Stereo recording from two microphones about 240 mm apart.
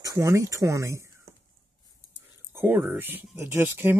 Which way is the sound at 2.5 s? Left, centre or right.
Centre.